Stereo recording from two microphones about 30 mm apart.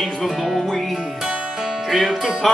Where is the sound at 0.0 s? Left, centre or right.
Centre.